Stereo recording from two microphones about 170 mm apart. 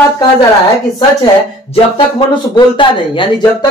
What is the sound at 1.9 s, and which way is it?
Speech, 30° left (ahead or behind).